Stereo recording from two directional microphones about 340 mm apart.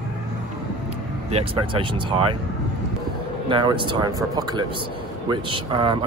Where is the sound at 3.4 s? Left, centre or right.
Centre.